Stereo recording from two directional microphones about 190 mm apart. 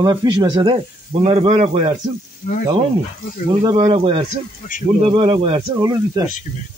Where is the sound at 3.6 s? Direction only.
30° right (ahead or behind).